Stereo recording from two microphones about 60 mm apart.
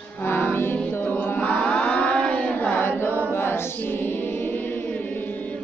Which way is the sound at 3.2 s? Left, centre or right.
Left.